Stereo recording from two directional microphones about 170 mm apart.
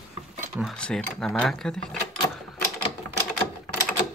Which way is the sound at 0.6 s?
5° left (ahead or behind).